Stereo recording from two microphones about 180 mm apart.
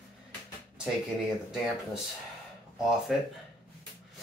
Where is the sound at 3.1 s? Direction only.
Centre (ahead or behind).